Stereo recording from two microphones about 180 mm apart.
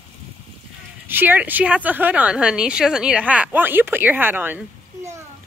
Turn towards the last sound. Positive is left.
turn(degrees=-10)  # may be behind; listen again after turning